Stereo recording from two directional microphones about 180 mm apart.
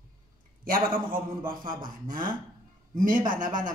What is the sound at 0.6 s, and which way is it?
A man's voice, 50° right (ahead or behind).